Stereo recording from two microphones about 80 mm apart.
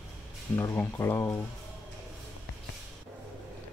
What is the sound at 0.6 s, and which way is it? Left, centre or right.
Speech, left.